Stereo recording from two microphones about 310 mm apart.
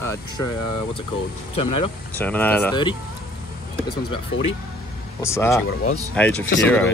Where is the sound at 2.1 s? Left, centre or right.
Centre.